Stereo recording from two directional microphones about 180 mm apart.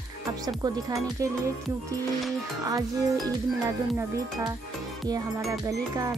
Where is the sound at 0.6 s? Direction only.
20° right (ahead or behind).